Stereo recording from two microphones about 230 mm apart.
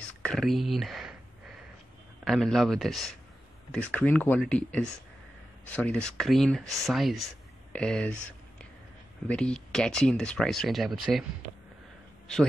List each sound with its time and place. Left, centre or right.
0.0 s speech: centre
2.2 s speech: centre
9.3 s speech: centre